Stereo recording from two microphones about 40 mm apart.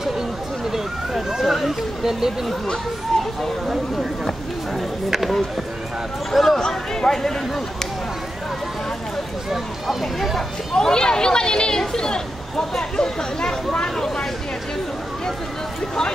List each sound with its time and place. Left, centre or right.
1.4 s speech: centre
1.7 s speech: centre
3.6 s speech: centre
6.3 s speech: centre
6.6 s speech: centre
9.5 s speech: centre
10.7 s speech: centre